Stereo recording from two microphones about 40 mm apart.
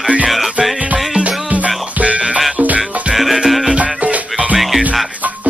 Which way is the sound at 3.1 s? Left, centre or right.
Centre.